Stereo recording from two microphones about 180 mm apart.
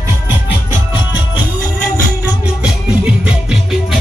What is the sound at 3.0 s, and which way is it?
Music, 5° right (ahead or behind).